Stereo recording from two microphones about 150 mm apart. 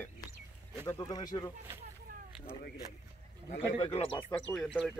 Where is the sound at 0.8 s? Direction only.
20° left (ahead or behind).